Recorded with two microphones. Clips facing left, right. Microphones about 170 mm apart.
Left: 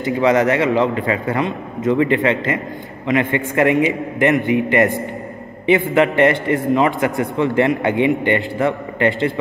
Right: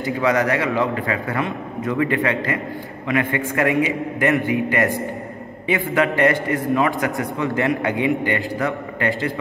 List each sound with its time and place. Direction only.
0.0 s a man's voice: 20° left (ahead or behind)
5.9 s a man's voice: 25° left (ahead or behind)